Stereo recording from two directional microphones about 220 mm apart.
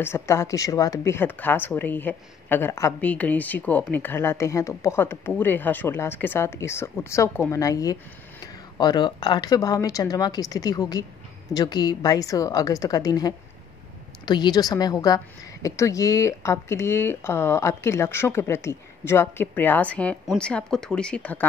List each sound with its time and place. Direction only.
0.0 s speech: 10° left (ahead or behind)